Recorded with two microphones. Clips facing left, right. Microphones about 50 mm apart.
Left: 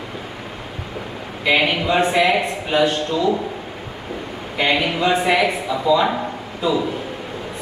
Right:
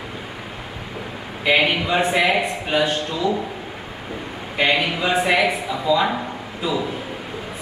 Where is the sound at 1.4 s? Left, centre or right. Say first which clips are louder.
Left 1 dB; centre.